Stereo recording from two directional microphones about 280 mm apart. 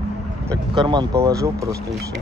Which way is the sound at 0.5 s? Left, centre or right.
Centre.